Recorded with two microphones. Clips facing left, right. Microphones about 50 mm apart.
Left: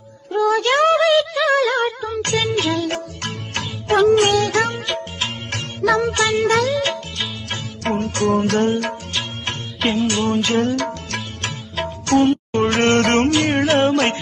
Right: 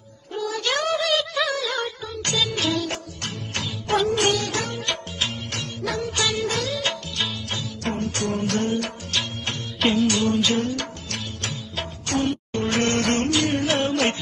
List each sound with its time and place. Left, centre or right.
0.4 s a sound: left
1.1 s music: centre
1.5 s music: left
7.5 s music: left
11.8 s music: left
12.7 s music: left